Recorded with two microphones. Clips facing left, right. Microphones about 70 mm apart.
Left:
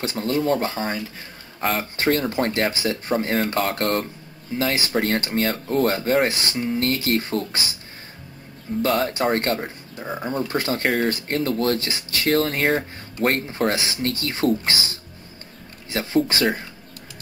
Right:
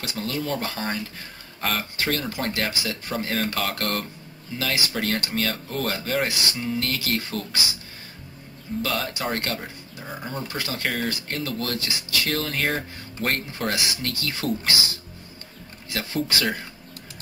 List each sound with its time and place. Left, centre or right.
0.0 s speech: left
8.8 s speech: left
15.9 s speech: left